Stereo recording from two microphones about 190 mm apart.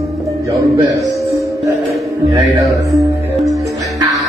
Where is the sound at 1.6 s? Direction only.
15° right (ahead or behind).